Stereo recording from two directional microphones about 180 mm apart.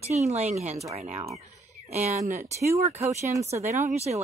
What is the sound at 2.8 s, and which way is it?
Speech, 40° right (ahead or behind).